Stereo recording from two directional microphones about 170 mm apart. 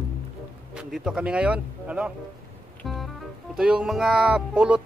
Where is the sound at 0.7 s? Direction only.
5° right (ahead or behind).